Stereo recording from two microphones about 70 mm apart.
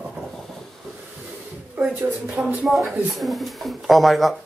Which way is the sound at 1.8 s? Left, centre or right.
Centre.